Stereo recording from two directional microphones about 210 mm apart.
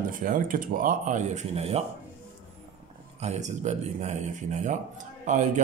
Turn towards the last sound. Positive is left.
turn(degrees=-35)  # may be behind; listen again after turning